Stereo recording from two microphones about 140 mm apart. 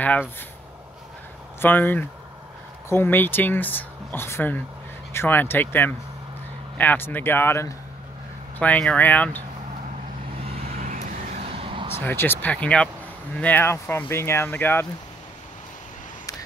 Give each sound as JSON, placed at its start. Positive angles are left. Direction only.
{"t": 0.0, "sound": "speech", "side_deg": 10}
{"t": 1.6, "sound": "speech", "side_deg": 15}
{"t": 10.7, "sound": "vehicle", "side_deg": -85}
{"t": 11.3, "sound": "vehicle", "side_deg": -45}
{"t": 12.0, "sound": "speech", "side_deg": 15}